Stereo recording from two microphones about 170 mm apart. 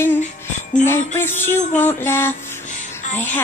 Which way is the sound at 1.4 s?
10° left (ahead or behind).